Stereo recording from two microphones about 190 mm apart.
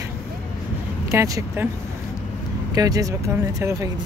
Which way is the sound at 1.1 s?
15° right (ahead or behind).